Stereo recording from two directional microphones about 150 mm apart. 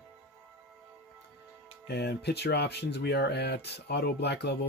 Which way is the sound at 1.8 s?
90° left.